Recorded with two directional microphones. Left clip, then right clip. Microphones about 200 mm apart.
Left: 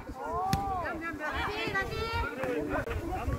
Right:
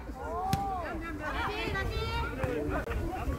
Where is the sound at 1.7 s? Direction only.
40° right (ahead or behind).